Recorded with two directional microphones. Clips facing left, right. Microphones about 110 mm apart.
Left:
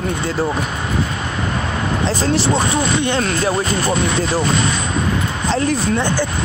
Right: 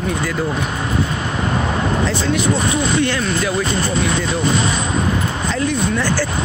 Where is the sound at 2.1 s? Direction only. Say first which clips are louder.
Left 1 dB; 35° left (ahead or behind).